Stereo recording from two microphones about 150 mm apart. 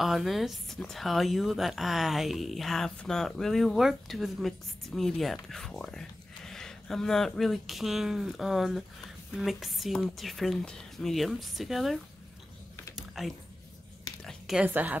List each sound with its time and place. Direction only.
0.0 s speech: centre (ahead or behind)
12.9 s typing: centre (ahead or behind)
14.2 s a woman's voice: 5° right (ahead or behind)